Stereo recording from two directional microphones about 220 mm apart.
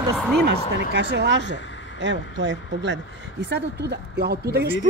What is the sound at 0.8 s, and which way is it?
Speech, 50° right (ahead or behind).